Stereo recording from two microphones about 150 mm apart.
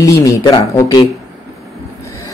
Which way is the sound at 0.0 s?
20° left (ahead or behind).